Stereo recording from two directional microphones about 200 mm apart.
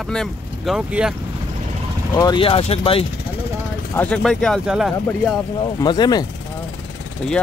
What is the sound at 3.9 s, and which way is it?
Speech, 5° left (ahead or behind).